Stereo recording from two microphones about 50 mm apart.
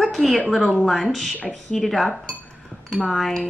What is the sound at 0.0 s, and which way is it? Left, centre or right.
A woman's voice, centre.